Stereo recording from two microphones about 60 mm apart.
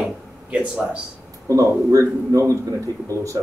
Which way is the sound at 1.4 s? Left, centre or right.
Right.